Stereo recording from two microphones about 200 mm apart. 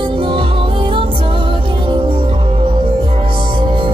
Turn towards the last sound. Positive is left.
turn(degrees=-25)  # may be behind; listen again after turning